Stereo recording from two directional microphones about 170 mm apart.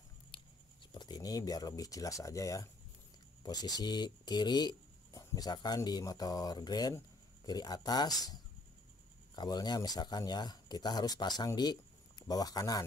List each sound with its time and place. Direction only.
0.3 s a sound: 25° left (ahead or behind)
0.9 s speech: 25° left (ahead or behind)
9.3 s speech: 25° left (ahead or behind)